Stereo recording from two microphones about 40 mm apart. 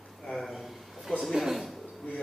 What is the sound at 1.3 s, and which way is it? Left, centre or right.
Speech, centre.